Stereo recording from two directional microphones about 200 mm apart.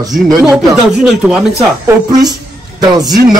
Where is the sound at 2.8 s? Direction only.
20° right (ahead or behind).